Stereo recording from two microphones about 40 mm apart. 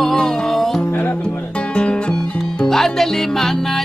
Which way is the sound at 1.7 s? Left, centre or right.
Left.